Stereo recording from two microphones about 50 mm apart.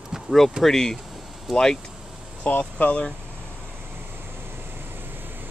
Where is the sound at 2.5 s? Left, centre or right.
Left.